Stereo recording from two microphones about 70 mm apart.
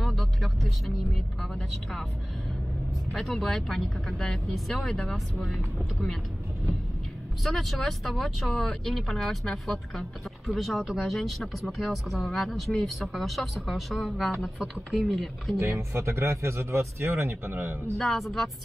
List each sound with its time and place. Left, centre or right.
0.0 s vehicle: centre
1.4 s speech: centre
3.1 s speech: centre
7.4 s speech: centre
15.6 s speech: right
17.9 s speech: centre